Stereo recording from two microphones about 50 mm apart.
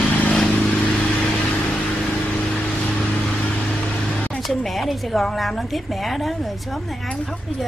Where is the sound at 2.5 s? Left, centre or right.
Centre.